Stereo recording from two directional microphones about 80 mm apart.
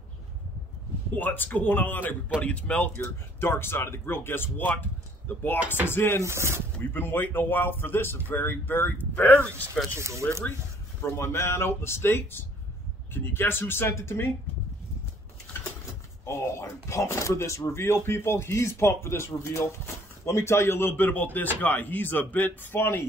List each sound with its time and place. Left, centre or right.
1.1 s speech: left
3.0 s speech: left
6.2 s speech: right
6.8 s speech: left
9.9 s speech: right
11.0 s speech: left
16.3 s speech: left